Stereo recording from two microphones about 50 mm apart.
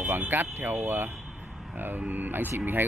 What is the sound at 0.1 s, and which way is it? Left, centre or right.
Speech, right.